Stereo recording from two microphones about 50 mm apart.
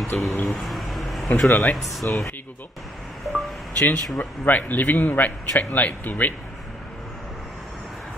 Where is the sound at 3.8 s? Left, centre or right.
Left.